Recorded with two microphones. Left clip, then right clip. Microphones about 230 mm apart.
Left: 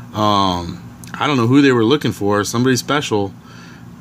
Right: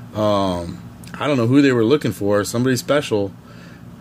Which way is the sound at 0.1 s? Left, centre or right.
Centre.